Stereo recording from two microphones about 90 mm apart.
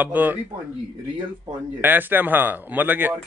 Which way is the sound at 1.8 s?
20° right (ahead or behind).